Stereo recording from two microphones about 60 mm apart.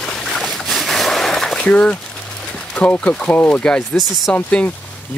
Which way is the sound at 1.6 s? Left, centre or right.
Centre.